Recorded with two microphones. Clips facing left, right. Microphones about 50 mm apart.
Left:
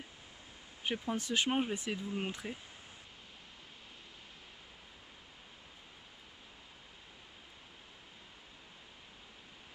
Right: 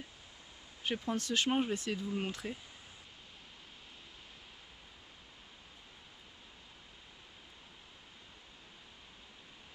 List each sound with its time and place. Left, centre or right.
0.8 s speech: centre
1.1 s speech: centre